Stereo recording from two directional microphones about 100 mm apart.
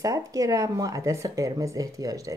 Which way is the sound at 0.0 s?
35° right (ahead or behind).